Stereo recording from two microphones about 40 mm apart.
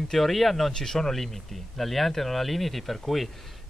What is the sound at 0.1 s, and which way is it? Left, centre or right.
Speech, centre.